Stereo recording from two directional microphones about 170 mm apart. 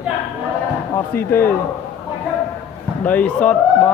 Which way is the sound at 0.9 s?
15° left (ahead or behind).